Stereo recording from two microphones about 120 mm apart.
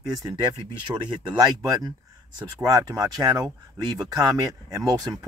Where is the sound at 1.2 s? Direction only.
30° right (ahead or behind).